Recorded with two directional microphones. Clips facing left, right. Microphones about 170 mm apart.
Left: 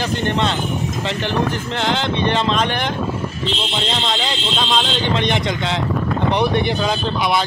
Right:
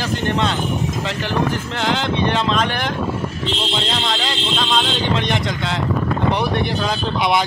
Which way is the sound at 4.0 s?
Centre (ahead or behind).